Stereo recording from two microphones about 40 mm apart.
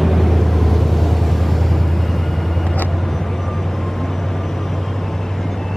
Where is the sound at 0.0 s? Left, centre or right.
Centre.